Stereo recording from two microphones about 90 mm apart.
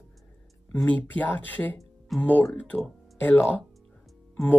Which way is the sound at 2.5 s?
15° left (ahead or behind).